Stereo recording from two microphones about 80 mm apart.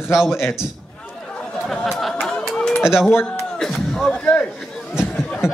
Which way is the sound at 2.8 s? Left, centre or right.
Centre.